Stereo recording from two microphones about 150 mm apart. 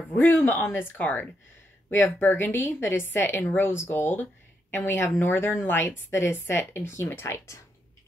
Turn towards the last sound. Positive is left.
turn(degrees=20)  # may be behind; listen again after turning